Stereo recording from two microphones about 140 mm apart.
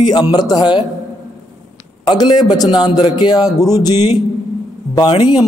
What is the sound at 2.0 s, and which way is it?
Speech, 30° left (ahead or behind).